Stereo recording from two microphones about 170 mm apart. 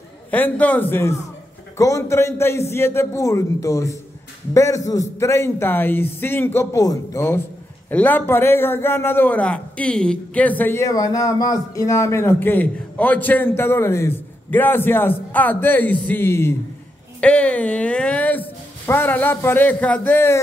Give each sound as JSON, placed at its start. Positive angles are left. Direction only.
{"t": 0.3, "sound": "a man's voice", "side_deg": 10}